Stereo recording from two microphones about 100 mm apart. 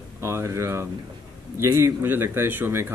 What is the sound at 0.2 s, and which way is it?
Speech, 25° right (ahead or behind).